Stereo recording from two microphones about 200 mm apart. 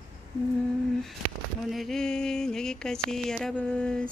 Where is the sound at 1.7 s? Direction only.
Centre (ahead or behind).